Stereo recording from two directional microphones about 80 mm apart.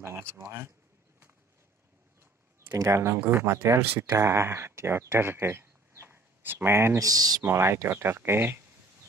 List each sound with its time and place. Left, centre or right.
0.0 s speech: right
2.7 s speech: right
7.0 s speech: right
7.4 s speech: right